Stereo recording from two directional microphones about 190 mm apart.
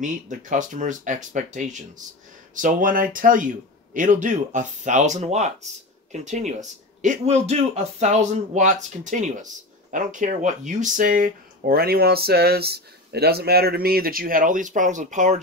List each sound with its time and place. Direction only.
0.0 s a man's voice: 45° right (ahead or behind)